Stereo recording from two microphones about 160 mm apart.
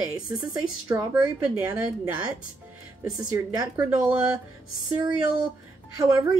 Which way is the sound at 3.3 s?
20° right (ahead or behind).